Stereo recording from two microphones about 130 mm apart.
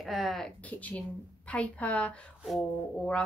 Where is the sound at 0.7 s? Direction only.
10° left (ahead or behind).